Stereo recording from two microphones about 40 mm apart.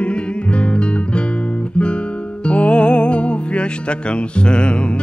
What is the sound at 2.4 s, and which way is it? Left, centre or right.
Speech, left.